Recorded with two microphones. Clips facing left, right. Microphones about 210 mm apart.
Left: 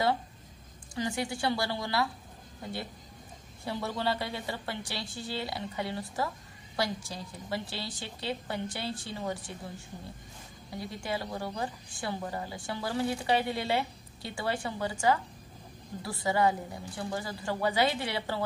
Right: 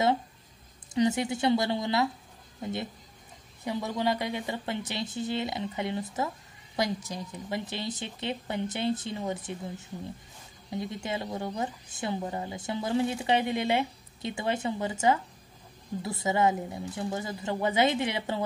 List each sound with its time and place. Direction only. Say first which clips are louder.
0.9 s a woman's voice: right 7 dB; 20° right (ahead or behind)